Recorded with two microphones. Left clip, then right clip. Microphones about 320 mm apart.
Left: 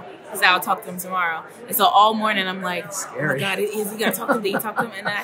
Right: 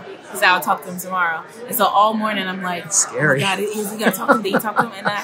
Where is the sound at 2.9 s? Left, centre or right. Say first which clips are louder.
Right 7 dB; right.